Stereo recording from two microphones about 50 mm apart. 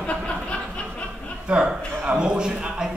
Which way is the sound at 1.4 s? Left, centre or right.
Centre.